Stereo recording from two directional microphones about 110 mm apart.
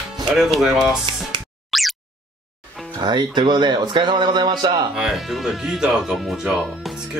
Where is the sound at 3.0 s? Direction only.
40° right (ahead or behind).